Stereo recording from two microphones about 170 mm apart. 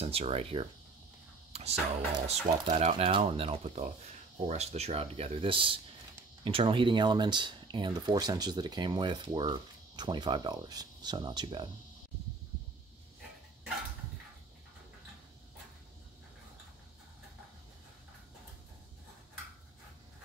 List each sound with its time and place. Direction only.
0.0 s speech: 35° right (ahead or behind)
1.5 s music: 40° right (ahead or behind)
2.2 s speech: 40° right (ahead or behind)